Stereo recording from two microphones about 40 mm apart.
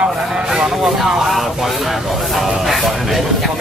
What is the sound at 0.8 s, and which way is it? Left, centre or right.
Speech, centre.